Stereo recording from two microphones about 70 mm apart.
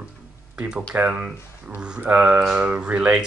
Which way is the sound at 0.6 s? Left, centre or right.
Centre.